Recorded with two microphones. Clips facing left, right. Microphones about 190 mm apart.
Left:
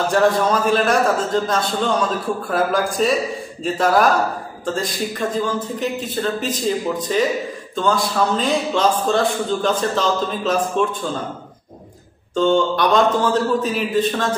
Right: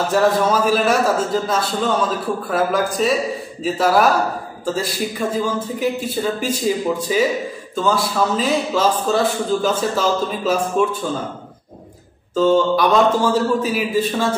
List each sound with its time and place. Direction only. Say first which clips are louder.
0.1 s a man's voice: right 1 dB; 5° right (ahead or behind)
12.4 s speech: right 2 dB; 5° right (ahead or behind)